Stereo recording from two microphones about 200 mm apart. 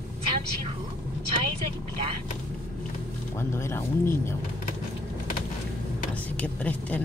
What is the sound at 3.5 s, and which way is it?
Speech, 10° left (ahead or behind).